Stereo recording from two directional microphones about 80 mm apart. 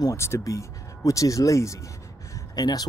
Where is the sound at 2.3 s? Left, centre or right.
Left.